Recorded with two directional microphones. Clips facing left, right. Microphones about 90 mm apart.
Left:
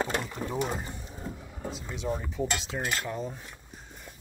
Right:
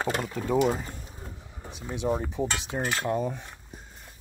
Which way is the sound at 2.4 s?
40° right (ahead or behind).